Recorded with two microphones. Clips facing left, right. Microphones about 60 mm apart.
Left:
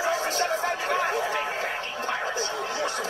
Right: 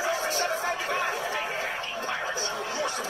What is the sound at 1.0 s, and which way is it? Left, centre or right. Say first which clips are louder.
Speech: left 3 dB; left.